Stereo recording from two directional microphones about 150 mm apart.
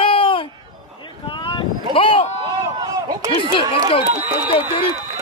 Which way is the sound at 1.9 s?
35° left (ahead or behind).